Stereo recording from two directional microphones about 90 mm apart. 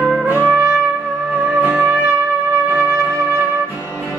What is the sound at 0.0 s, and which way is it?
Trumpet, 15° right (ahead or behind).